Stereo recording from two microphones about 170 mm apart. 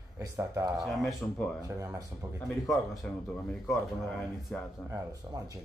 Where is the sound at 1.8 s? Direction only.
20° right (ahead or behind).